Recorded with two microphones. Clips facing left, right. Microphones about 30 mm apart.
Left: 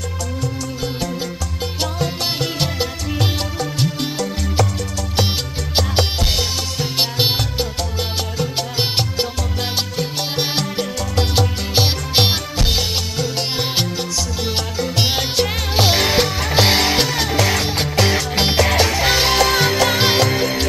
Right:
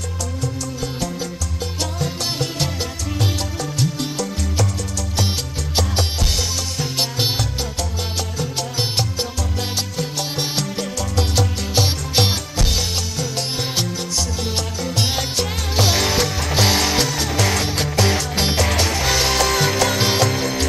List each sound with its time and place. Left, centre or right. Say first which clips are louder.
1.8 s music: left 3 dB; left
5.8 s music: left 3 dB; left
17.4 s music: even; centre